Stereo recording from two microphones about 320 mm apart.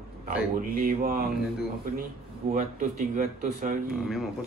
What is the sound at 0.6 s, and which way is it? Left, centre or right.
Speech, right.